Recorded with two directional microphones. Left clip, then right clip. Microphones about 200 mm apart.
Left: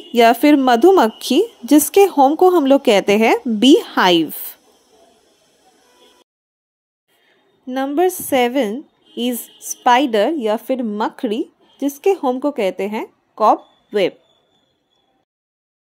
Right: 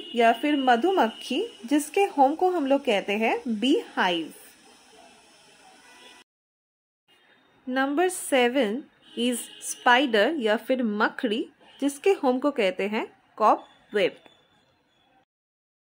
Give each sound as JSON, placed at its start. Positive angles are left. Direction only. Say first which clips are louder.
{"t": 0.1, "sound": "a woman's voice", "louder": "left 10 dB", "side_deg": 45}
{"t": 7.6, "sound": "a woman's voice", "louder": "left 7 dB", "side_deg": 20}